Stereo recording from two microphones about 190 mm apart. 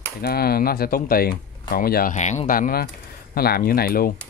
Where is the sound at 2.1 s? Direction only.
40° left (ahead or behind).